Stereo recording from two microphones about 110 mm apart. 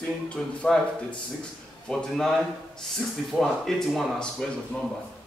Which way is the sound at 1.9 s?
5° left (ahead or behind).